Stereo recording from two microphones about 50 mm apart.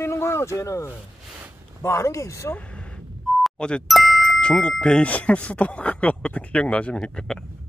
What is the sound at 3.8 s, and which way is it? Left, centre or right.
Music, centre.